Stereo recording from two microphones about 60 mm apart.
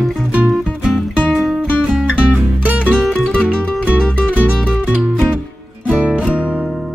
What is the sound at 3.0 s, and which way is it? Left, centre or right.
Music, centre.